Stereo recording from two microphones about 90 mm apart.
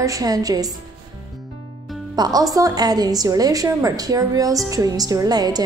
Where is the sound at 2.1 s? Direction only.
45° right (ahead or behind).